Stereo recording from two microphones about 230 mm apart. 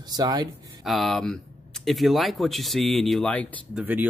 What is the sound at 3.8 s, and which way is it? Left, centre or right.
Speech, centre.